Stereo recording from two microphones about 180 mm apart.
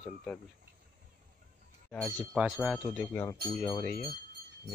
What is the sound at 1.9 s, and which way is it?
Speech, 5° left (ahead or behind).